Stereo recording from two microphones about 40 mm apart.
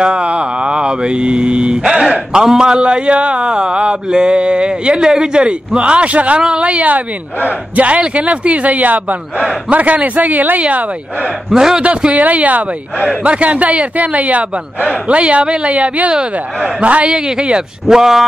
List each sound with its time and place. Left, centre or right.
0.0 s a man's voice: right
11.5 s speech: centre
11.8 s a man's voice: right
16.1 s speech: right
16.8 s a man's voice: right
17.1 s speech: right